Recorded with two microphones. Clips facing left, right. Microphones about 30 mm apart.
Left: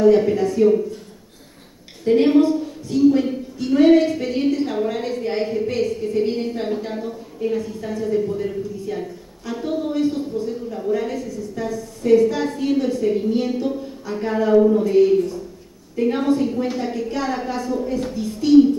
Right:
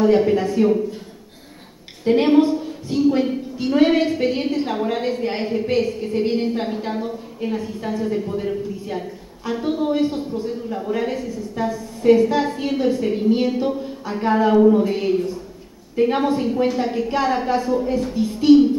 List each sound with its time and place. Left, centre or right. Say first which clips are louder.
0.0 s a woman's voice: left 1 dB; centre
2.0 s a woman's voice: even; right